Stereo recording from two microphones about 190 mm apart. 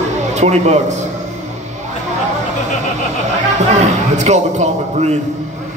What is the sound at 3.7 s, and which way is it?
A man's voice, 40° right (ahead or behind).